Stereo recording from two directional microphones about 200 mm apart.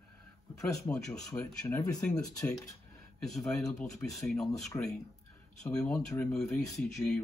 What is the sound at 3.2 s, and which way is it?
Speech, centre (ahead or behind).